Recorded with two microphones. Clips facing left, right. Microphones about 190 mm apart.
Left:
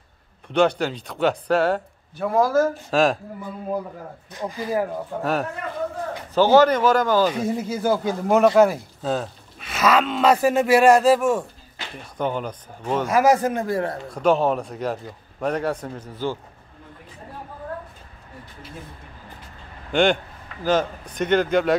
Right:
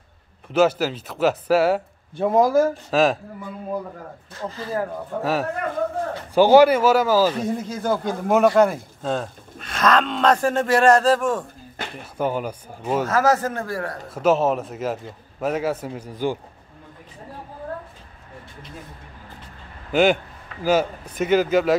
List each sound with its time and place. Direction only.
0.5 s speech: 5° right (ahead or behind)
2.1 s speech: 20° right (ahead or behind)
2.9 s speech: centre (ahead or behind)
4.3 s speech: 15° left (ahead or behind)
5.2 s speech: centre (ahead or behind)
6.3 s speech: 10° right (ahead or behind)
7.3 s speech: 5° left (ahead or behind)
12.0 s speech: 5° right (ahead or behind)
13.0 s speech: 15° left (ahead or behind)
14.1 s speech: centre (ahead or behind)
19.9 s speech: 5° right (ahead or behind)